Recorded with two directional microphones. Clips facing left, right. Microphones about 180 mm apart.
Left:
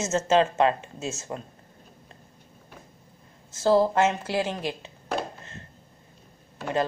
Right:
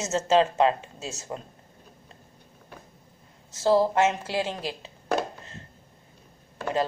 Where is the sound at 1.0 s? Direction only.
25° left (ahead or behind).